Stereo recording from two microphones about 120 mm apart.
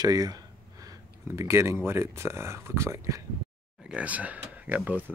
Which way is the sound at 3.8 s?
10° right (ahead or behind).